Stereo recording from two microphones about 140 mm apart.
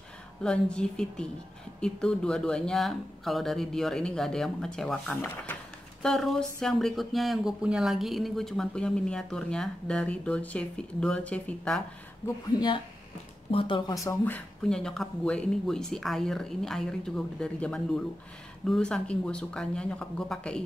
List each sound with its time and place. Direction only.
0.4 s speech: 5° left (ahead or behind)
12.5 s speech: 35° left (ahead or behind); by 20.6 s 5° left (ahead or behind)